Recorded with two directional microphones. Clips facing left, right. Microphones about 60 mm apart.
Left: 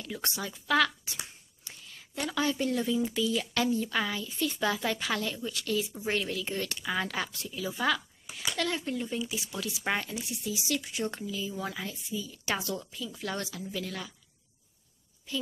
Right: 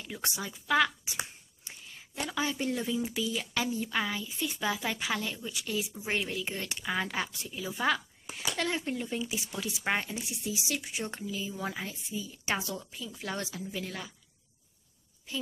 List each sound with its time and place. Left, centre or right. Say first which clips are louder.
0.0 s speech: left 1 dB; centre
1.1 s whispering: right 5 dB; right
2.1 s speech: left 3 dB; centre